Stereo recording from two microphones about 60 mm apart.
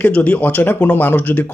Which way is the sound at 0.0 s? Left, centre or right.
Left.